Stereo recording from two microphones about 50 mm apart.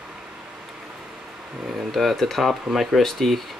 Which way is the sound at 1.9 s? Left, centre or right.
Centre.